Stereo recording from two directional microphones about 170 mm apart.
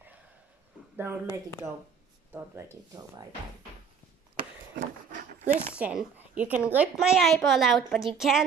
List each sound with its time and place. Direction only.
0.9 s speech: 10° right (ahead or behind)
2.3 s speech: 15° right (ahead or behind)
4.7 s dog: 50° right (ahead or behind)
5.8 s a woman's voice: 10° right (ahead or behind)